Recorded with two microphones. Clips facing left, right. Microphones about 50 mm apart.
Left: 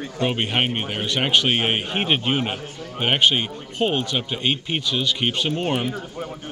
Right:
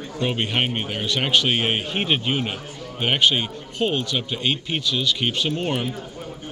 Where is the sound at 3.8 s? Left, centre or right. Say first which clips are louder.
Left 1 dB; centre.